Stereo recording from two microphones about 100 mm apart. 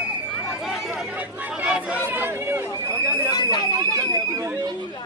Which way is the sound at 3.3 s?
45° left (ahead or behind).